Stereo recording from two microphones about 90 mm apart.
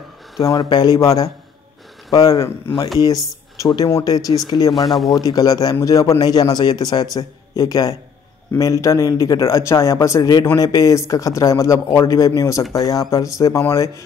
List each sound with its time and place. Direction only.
0.5 s a man's voice: 60° left (ahead or behind)
0.9 s a man's voice: 35° left (ahead or behind)
2.7 s speech: 20° left (ahead or behind)
3.6 s a man's voice: 35° left (ahead or behind)
4.5 s a man's voice: 60° left (ahead or behind)
4.7 s speech: centre (ahead or behind)
5.1 s a man's voice: 45° left (ahead or behind)
6.2 s a man's voice: 50° left (ahead or behind); by 14.0 s 30° left (ahead or behind)